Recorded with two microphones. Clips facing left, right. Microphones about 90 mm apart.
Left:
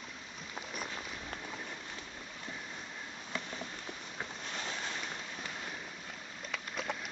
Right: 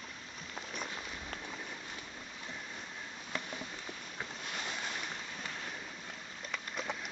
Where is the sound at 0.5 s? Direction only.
5° left (ahead or behind).